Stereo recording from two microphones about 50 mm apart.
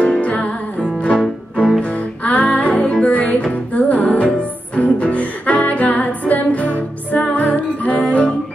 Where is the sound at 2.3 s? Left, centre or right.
Left.